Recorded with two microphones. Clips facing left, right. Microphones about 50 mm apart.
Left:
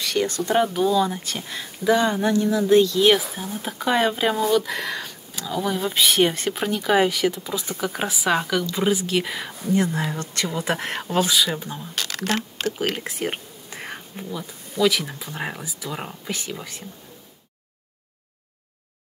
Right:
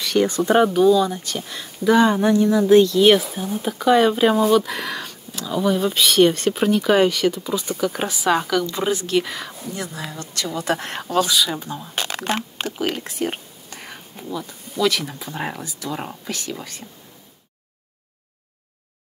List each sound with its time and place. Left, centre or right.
0.1 s speech: centre
0.7 s speech: centre
2.0 s speech: centre
4.1 s speech: centre
10.1 s speech: left
10.5 s speech: centre
11.9 s speech: right
12.9 s speech: centre